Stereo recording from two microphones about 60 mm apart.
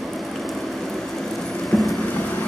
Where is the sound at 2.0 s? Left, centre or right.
Left.